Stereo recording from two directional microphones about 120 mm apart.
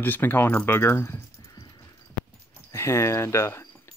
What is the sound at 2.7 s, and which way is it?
Speech, 25° left (ahead or behind).